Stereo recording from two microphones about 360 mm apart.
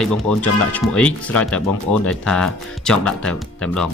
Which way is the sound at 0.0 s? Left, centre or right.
Centre.